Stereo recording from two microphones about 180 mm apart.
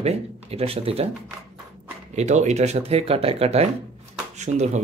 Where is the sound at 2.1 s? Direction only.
40° right (ahead or behind).